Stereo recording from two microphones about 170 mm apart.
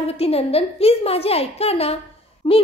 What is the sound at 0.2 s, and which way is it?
A woman's voice, 35° left (ahead or behind).